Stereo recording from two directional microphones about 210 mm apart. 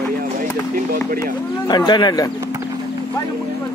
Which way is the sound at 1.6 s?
20° left (ahead or behind).